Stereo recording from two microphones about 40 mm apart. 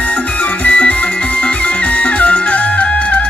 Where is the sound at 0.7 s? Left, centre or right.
Left.